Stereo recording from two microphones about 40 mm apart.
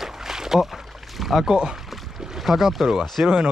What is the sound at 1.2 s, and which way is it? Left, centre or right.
Rowboat, centre.